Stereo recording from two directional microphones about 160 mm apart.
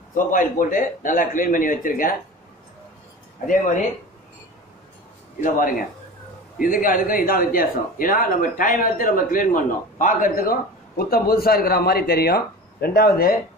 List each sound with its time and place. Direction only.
0.1 s speech: 55° left (ahead or behind)
5.4 s a man's voice: 60° left (ahead or behind)